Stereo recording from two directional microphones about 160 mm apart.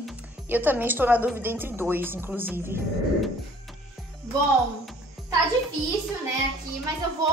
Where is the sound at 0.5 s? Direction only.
10° right (ahead or behind).